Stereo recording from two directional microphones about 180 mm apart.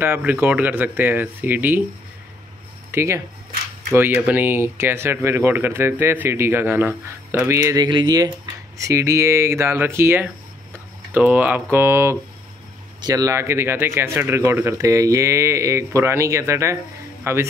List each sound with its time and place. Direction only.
0.0 s speech: 10° right (ahead or behind)
2.9 s a man's voice: 15° right (ahead or behind)